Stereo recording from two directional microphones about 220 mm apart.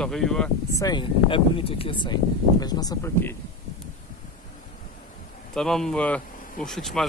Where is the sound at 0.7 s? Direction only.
20° left (ahead or behind).